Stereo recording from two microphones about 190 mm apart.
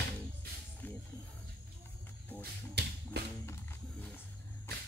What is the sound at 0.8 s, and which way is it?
Music, 10° left (ahead or behind).